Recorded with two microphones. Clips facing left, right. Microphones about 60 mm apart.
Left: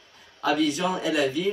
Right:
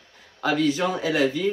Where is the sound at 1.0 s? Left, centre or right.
Right.